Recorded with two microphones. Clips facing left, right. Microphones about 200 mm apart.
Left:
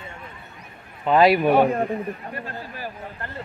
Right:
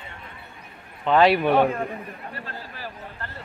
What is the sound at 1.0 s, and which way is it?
Speech, 10° left (ahead or behind).